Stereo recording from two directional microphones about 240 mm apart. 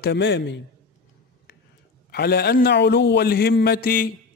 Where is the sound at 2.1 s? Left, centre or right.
Left.